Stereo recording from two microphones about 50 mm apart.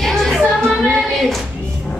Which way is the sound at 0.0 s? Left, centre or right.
Centre.